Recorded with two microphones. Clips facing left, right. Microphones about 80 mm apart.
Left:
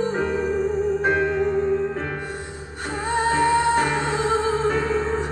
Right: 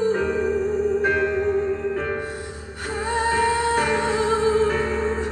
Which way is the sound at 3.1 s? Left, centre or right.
Left.